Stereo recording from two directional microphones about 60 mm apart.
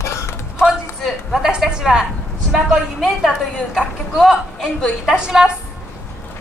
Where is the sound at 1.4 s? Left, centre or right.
Centre.